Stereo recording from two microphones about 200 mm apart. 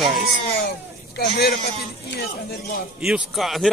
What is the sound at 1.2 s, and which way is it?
A man's voice, 55° left (ahead or behind).